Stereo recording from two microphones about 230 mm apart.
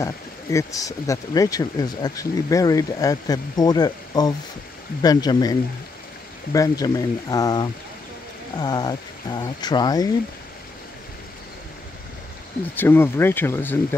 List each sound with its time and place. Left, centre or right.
0.0 s speech: centre
12.7 s speech: centre